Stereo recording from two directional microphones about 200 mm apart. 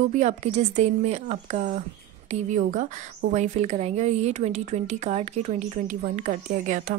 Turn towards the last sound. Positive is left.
turn(degrees=-40)  # may be behind; listen again after turning